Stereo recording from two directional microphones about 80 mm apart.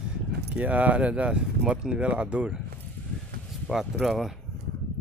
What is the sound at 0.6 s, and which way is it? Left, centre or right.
Speech, centre.